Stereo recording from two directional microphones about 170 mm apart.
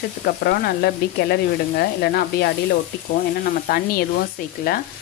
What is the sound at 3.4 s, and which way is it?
Speech, 60° left (ahead or behind).